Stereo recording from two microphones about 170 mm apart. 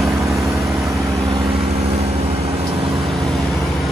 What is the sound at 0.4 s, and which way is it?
Vehicle, centre (ahead or behind).